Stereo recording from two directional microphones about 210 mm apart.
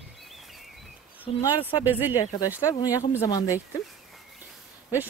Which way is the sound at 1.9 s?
10° right (ahead or behind).